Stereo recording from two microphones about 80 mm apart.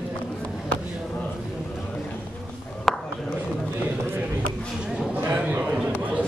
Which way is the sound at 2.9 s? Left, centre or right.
Centre.